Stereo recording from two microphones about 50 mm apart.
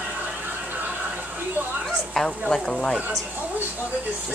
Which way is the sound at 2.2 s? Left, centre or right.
Centre.